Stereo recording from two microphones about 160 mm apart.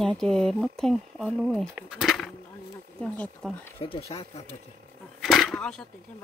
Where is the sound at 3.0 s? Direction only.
5° left (ahead or behind).